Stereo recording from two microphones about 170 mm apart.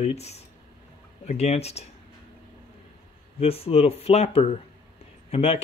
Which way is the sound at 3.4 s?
35° left (ahead or behind).